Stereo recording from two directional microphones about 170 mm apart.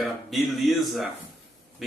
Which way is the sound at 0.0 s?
Centre (ahead or behind).